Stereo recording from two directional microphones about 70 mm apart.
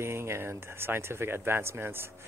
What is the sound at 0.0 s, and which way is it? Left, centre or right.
Speech, right.